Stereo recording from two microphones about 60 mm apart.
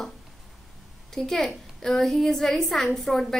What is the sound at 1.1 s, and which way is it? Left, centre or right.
A woman's voice, centre.